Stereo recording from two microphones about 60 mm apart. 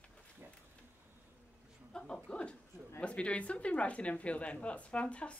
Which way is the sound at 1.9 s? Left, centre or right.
Centre.